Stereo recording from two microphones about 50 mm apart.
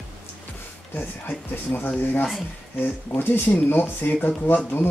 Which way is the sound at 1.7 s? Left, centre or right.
Left.